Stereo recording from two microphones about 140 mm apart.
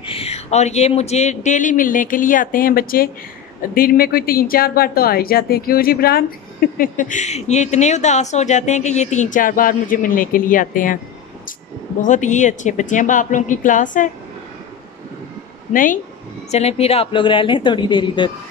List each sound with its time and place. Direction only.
0.0 s speech: 45° left (ahead or behind); by 11.0 s 75° left (ahead or behind)
12.0 s speech: 60° left (ahead or behind)
15.7 s speech: 75° left (ahead or behind)
16.4 s a woman's voice: 50° left (ahead or behind); by 18.3 s 35° left (ahead or behind)